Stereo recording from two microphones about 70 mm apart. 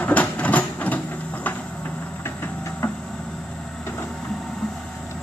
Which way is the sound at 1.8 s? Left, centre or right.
Left.